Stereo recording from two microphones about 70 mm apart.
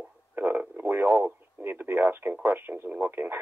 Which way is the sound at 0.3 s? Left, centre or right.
Right.